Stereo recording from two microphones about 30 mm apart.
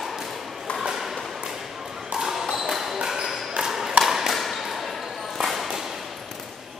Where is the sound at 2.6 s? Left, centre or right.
Centre.